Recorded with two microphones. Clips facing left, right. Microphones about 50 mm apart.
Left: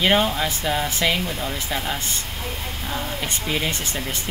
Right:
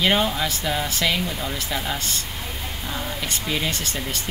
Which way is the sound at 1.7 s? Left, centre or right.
Centre.